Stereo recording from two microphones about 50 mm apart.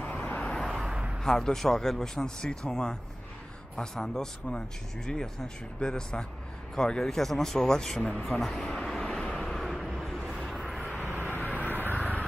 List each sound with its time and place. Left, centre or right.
0.0 s vehicle: left
0.7 s a sound: centre
0.9 s a sound: centre
1.2 s speech: centre
8.9 s vehicle: centre
9.8 s vehicle: centre
10.1 s vehicle: centre
10.4 s vehicle: centre
10.7 s vehicle: centre
11.2 s vehicle: left
11.7 s vehicle: right